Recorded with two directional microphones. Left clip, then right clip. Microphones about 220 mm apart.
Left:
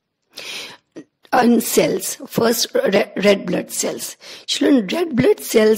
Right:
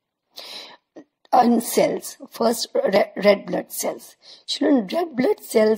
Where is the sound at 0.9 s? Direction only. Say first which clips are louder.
Even; 50° left (ahead or behind).